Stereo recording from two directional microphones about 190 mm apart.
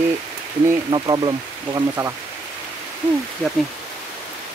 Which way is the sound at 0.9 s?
20° right (ahead or behind).